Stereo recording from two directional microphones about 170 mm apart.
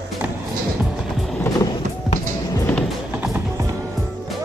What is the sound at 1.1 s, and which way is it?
Music, centre (ahead or behind).